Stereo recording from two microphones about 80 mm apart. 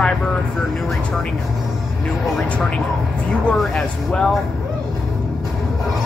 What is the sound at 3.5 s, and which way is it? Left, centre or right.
Speech, centre.